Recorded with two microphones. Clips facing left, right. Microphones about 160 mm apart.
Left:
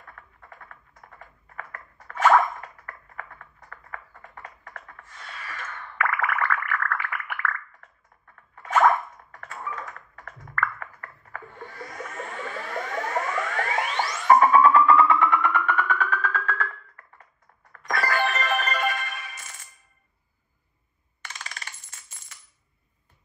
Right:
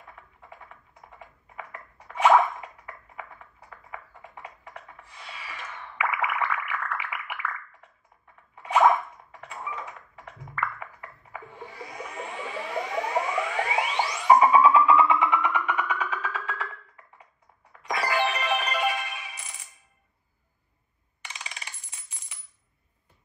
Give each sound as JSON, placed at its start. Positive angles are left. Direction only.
{"t": 0.0, "sound": "typing", "side_deg": -10}
{"t": 5.8, "sound": "music", "side_deg": -5}
{"t": 8.5, "sound": "a sound", "side_deg": -10}
{"t": 9.5, "sound": "typing", "side_deg": -10}
{"t": 10.6, "sound": "a sound", "side_deg": -10}
{"t": 11.4, "sound": "music", "side_deg": -5}
{"t": 21.2, "sound": "coin", "side_deg": -15}